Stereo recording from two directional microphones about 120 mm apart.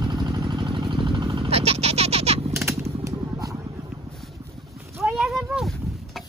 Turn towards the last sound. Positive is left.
turn(degrees=0)  # may be behind; listen again after turning